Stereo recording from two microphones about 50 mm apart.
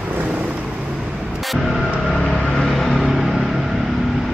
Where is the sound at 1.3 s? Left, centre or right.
Centre.